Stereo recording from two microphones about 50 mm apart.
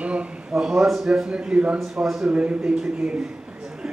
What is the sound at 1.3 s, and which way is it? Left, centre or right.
Speech, right.